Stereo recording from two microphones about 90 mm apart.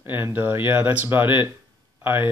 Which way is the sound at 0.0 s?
25° right (ahead or behind).